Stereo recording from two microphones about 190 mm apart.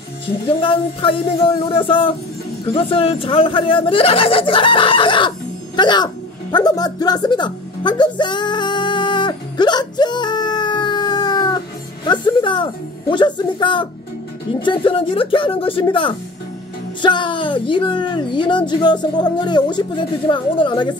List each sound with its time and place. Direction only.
0.3 s speech: 25° left (ahead or behind)
5.8 s music: 25° left (ahead or behind)
13.1 s speech: 25° left (ahead or behind)